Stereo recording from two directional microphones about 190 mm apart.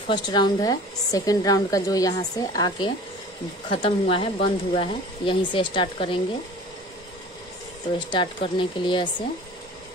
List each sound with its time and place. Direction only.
0.1 s a woman's voice: 25° left (ahead or behind)
8.1 s a woman's voice: 25° left (ahead or behind)